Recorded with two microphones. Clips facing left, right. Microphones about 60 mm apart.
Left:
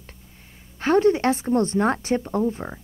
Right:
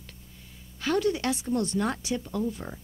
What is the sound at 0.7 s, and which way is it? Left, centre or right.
A woman's voice, left.